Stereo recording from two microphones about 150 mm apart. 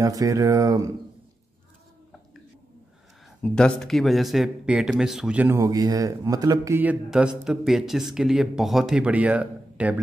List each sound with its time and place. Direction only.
0.0 s speech: 25° right (ahead or behind)
3.4 s speech: 5° left (ahead or behind); by 5.6 s 10° right (ahead or behind)
5.6 s speech: 25° right (ahead or behind); by 9.9 s 10° right (ahead or behind)